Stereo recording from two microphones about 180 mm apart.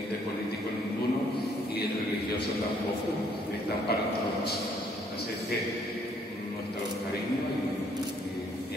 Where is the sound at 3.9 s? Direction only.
60° left (ahead or behind).